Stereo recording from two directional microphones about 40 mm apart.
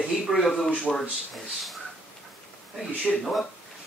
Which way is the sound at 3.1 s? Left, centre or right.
Centre.